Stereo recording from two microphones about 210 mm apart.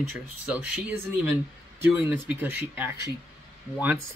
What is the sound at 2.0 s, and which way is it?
Speech, 5° right (ahead or behind).